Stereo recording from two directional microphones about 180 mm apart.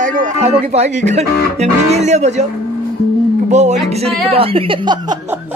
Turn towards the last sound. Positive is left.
turn(degrees=-30)  # may be behind; listen again after turning